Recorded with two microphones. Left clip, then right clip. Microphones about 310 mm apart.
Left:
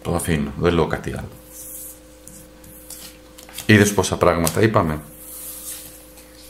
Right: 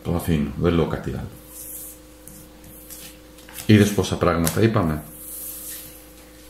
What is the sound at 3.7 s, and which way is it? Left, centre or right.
Speech, left.